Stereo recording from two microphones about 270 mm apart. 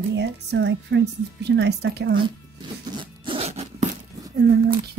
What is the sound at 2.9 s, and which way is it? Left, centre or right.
Zipper, centre.